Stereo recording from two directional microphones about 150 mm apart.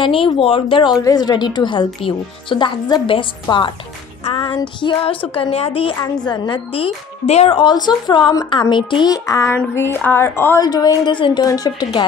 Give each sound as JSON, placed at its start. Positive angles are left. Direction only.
{"t": 0.0, "sound": "a woman's voice", "side_deg": 35}